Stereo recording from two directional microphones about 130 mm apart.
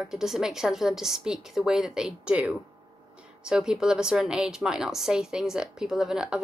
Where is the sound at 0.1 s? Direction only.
5° right (ahead or behind).